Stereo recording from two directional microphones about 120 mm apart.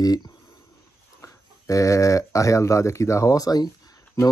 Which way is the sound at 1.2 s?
25° left (ahead or behind).